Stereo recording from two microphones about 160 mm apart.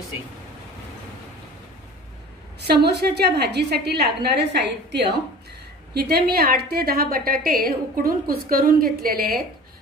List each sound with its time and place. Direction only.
2.6 s a woman's voice: 90° right
5.9 s a woman's voice: 80° right